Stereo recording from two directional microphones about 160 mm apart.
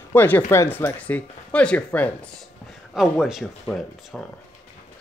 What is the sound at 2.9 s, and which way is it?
Speech, centre (ahead or behind).